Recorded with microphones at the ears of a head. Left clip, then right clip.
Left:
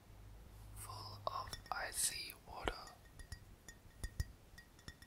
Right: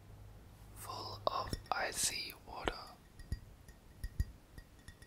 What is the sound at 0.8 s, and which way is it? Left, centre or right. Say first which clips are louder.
Whispering: right 7 dB; right.